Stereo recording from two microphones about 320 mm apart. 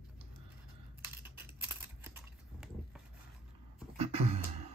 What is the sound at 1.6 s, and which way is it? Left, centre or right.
Typing, centre.